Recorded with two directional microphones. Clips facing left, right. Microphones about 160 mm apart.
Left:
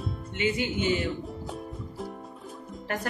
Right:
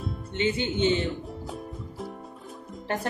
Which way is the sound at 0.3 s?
30° right (ahead or behind).